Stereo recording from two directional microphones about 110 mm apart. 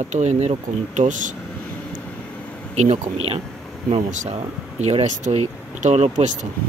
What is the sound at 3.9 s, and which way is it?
Speech, 85° right.